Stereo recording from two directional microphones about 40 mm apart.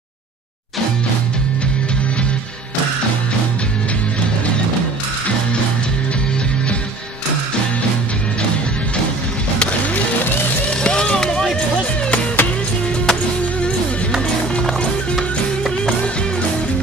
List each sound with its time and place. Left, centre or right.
10.7 s vehicle: left
12.4 s music: left
13.0 s music: centre